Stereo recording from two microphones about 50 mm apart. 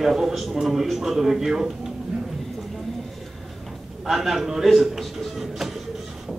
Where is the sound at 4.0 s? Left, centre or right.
Centre.